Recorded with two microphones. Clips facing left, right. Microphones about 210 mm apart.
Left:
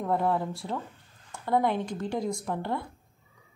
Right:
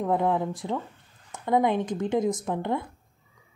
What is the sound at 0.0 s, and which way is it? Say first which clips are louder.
Speech: right 3 dB; 15° right (ahead or behind).